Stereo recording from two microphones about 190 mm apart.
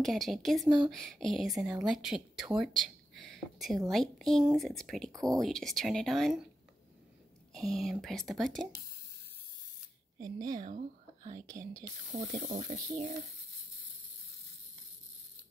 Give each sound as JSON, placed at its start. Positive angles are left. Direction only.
{"t": 0.0, "sound": "speech", "side_deg": 0}
{"t": 5.1, "sound": "speech", "side_deg": -20}
{"t": 5.4, "sound": "speech", "side_deg": 0}
{"t": 7.5, "sound": "speech", "side_deg": 0}
{"t": 10.1, "sound": "speech", "side_deg": -20}
{"t": 12.3, "sound": "speech", "side_deg": -35}